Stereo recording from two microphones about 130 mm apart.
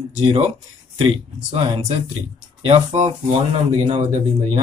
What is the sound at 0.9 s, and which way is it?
Speech, 45° right (ahead or behind).